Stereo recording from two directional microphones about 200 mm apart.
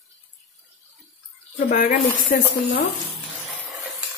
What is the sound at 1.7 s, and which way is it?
Speech, 50° left (ahead or behind).